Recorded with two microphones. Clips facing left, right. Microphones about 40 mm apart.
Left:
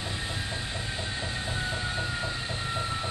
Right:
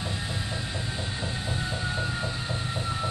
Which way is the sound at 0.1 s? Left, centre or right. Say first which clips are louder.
Right 1 dB; centre.